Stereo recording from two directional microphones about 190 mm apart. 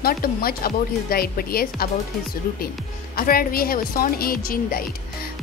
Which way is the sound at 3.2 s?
50° left (ahead or behind).